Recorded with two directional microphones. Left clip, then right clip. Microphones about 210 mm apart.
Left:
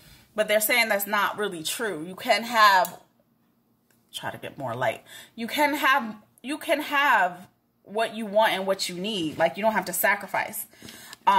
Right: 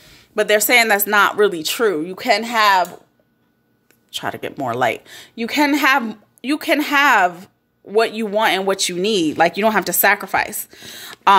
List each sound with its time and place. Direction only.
0.3 s a woman's voice: 40° right (ahead or behind)
4.1 s a woman's voice: 40° right (ahead or behind)